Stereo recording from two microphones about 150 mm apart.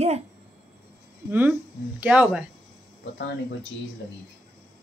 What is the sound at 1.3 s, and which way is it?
A woman's voice, 10° right (ahead or behind).